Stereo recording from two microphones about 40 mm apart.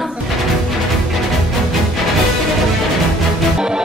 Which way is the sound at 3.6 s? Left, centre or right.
Centre.